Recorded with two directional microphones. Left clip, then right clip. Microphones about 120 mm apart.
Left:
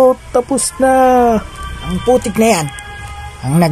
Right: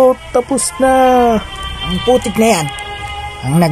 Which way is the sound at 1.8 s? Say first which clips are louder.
Even; 30° right (ahead or behind).